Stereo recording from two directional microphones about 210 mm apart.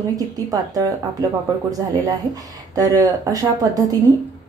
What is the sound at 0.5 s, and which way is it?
Speech, 15° right (ahead or behind).